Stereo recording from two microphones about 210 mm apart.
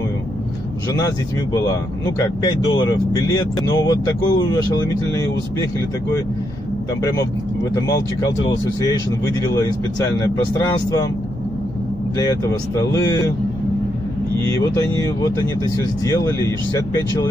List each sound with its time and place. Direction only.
2.7 s speech: 20° left (ahead or behind)
7.0 s speech: 15° left (ahead or behind)
12.9 s speech: 15° left (ahead or behind)
14.4 s speech: 10° left (ahead or behind)
16.1 s speech: 15° left (ahead or behind)